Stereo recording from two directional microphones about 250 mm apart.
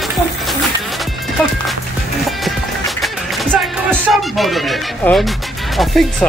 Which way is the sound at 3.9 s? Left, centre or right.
Centre.